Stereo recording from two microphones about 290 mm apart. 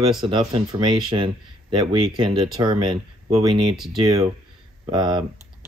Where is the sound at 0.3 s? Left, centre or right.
Centre.